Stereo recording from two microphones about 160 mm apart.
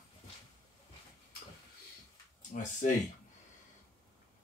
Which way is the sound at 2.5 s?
55° left (ahead or behind).